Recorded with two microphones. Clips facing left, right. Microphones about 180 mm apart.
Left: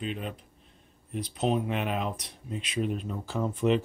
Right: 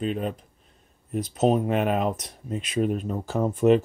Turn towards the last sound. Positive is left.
turn(degrees=-45)  # may be behind; listen again after turning